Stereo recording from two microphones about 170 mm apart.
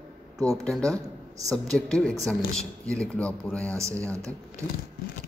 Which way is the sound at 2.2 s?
5° left (ahead or behind).